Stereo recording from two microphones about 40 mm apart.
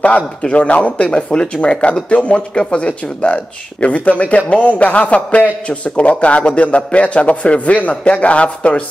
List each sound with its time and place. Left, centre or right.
0.4 s a man's voice: left